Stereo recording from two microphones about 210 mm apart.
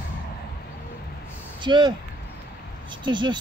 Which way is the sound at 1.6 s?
20° right (ahead or behind).